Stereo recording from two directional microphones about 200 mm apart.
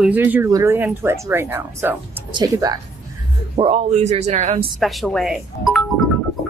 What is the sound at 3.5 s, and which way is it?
Speech, 30° right (ahead or behind).